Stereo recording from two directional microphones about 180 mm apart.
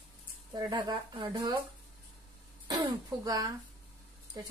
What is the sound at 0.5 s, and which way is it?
Speech, 25° right (ahead or behind).